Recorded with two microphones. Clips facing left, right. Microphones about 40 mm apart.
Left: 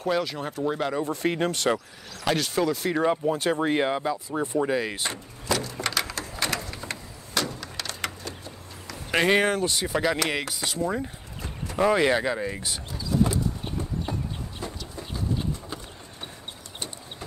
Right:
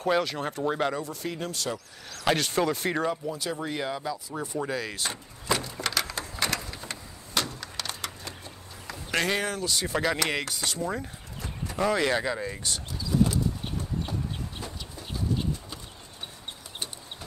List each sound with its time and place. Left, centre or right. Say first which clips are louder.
0.0 s speech: even; centre
1.0 s speech: left 8 dB; left
2.2 s speech: left 1 dB; centre
3.1 s speech: left 7 dB; left
5.5 s a sound: left 1 dB; centre
5.8 s a sound: left 2 dB; centre
7.4 s vehicle: left 3 dB; centre
9.1 s speech: left 5 dB; left
9.4 s speech: left 6 dB; left
9.8 s speech: left 2 dB; centre
14.1 s chicken: left 2 dB; centre